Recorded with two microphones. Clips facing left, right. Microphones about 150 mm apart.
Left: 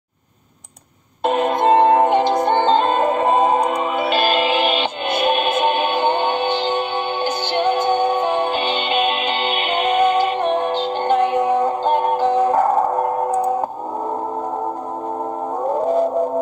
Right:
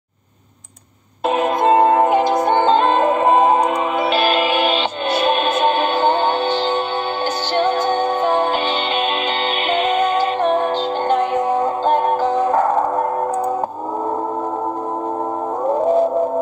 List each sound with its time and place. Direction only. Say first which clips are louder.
1.2 s music: even; 5° right (ahead or behind)
5.5 s music: right 1 dB; 15° left (ahead or behind)